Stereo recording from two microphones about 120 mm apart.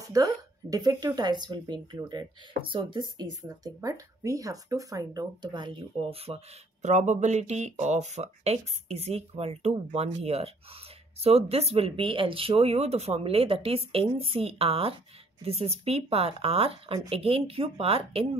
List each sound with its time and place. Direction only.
0.0 s speech: 30° right (ahead or behind); by 6.9 s 55° right (ahead or behind)
6.9 s speech: 90° right; by 18.3 s 55° right (ahead or behind)